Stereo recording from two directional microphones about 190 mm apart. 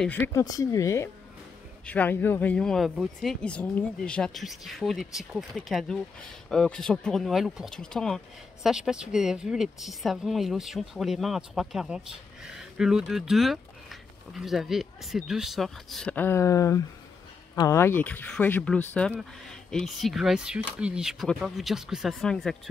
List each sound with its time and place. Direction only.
0.0 s speech: 10° left (ahead or behind)